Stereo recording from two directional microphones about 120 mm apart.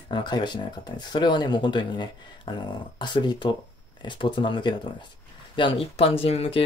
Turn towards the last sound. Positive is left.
turn(degrees=55)  # may be behind; listen again after turning